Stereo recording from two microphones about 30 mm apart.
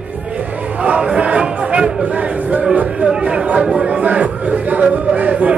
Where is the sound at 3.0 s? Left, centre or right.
Right.